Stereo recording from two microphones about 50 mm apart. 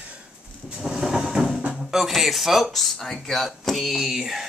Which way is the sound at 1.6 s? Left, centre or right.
Right.